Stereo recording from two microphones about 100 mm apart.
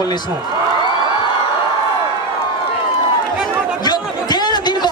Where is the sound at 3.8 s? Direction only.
45° left (ahead or behind).